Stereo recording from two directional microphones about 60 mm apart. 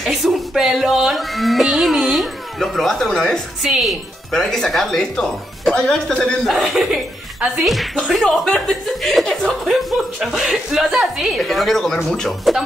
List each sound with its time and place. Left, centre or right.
0.0 s speech: centre
3.6 s a woman's voice: centre
4.3 s speech: centre
6.4 s speech: centre
11.3 s speech: centre